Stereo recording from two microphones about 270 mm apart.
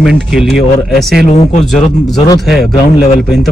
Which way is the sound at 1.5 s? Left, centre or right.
Left.